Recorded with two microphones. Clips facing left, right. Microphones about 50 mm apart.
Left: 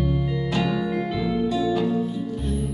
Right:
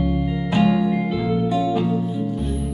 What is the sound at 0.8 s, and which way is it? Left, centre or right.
Music, centre.